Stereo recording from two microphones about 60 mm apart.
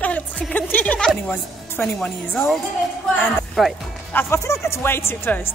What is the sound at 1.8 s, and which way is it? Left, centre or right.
Speech, left.